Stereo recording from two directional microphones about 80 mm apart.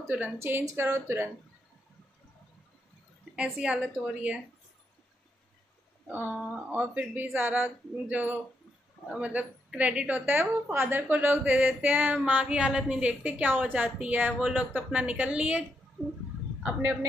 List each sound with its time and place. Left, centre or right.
0.1 s a woman's voice: right
0.7 s speech: right
3.5 s speech: centre
6.0 s a woman's voice: centre